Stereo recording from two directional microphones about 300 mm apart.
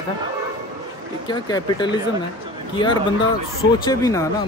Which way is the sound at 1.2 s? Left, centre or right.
Centre.